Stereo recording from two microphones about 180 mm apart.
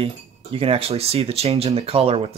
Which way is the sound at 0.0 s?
30° right (ahead or behind).